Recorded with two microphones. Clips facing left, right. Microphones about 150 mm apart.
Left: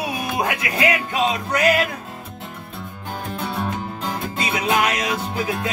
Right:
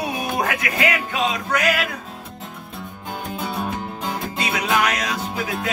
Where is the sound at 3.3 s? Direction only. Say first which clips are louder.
Left 1 dB; centre (ahead or behind).